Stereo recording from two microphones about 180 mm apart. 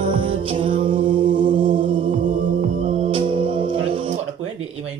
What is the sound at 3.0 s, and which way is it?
Music, 30° right (ahead or behind).